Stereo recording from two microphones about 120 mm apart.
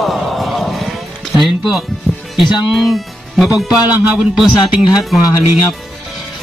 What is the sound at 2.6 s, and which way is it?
Speech, centre (ahead or behind).